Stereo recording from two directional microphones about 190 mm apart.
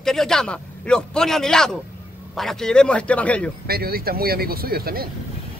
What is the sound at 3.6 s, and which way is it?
Speech, 55° right (ahead or behind).